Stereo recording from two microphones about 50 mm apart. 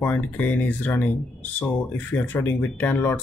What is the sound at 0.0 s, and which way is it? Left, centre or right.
Speech, left.